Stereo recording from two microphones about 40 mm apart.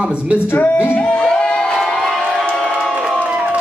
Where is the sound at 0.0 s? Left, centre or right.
Right.